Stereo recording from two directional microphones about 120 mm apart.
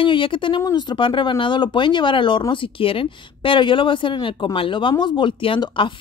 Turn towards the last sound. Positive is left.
turn(degrees=45)  # may be behind; listen again after turning